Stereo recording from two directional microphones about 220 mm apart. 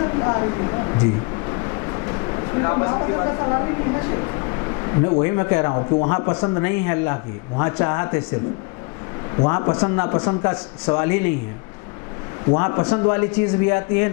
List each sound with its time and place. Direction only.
0.0 s a sound: 20° left (ahead or behind)
5.2 s speech: 15° left (ahead or behind)
9.4 s speech: 20° left (ahead or behind)
12.4 s speech: 20° left (ahead or behind)